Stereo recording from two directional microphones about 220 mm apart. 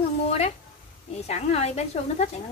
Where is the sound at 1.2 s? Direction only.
30° left (ahead or behind).